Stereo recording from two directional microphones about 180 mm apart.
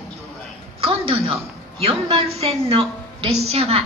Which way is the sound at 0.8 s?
30° right (ahead or behind).